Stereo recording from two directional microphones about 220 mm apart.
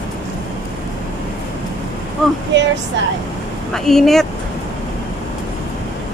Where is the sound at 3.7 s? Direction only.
Centre (ahead or behind).